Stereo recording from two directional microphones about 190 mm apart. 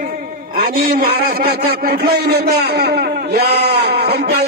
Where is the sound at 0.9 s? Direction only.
60° right (ahead or behind).